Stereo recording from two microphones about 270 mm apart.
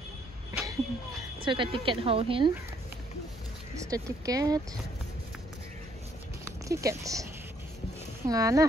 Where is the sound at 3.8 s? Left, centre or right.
Centre.